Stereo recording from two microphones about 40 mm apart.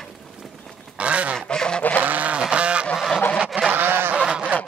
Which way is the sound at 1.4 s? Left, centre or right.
Left.